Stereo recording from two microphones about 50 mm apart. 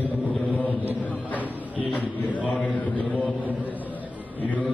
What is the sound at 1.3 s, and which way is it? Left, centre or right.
A man's voice, left.